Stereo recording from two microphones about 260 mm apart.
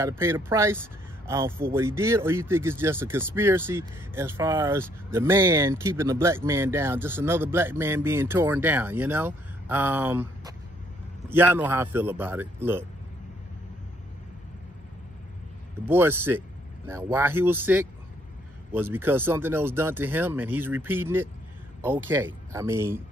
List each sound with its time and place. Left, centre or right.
0.0 s speech: centre
15.8 s speech: centre